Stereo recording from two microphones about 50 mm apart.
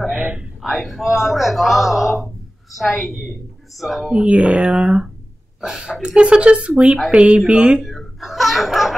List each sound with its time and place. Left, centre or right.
0.1 s speech: right
0.6 s a man's voice: centre
4.1 s a woman's voice: centre
7.8 s a sound: centre